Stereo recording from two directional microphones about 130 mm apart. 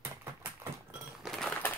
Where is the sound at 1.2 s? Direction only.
Centre (ahead or behind).